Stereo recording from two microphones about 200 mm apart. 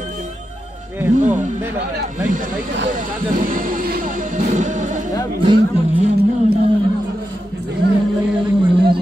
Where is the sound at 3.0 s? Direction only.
45° right (ahead or behind).